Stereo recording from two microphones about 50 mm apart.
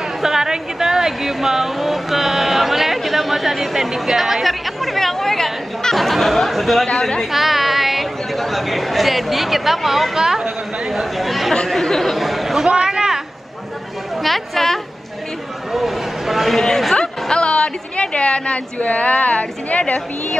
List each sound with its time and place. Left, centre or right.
0.2 s speech: centre
6.9 s speech: centre
7.3 s speech: centre
12.7 s a sound: centre
14.2 s a man's voice: centre
16.6 s a woman's voice: centre; by 20.3 s left